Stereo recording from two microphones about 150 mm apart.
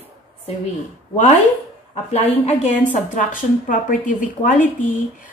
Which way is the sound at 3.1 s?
65° left (ahead or behind).